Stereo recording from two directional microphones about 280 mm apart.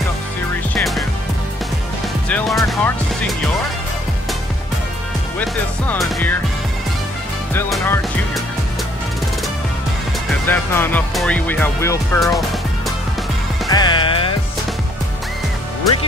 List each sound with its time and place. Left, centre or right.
0.7 s music: centre
2.2 s music: centre
5.4 s speech: centre
7.5 s speech: centre
10.4 s speech: centre
13.7 s music: centre